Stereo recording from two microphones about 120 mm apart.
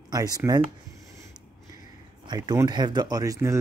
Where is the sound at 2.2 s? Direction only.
35° right (ahead or behind).